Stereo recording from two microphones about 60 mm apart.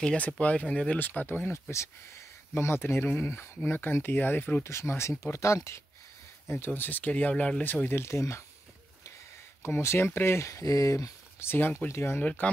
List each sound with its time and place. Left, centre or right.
0.4 s speech: left
0.9 s speech: left
1.5 s speech: left
3.7 s speech: left
4.6 s speech: left
6.4 s speech: left
6.7 s speech: left
7.9 s speech: left
9.8 s speech: left
11.3 s speech: left
11.9 s speech: left
12.2 s speech: left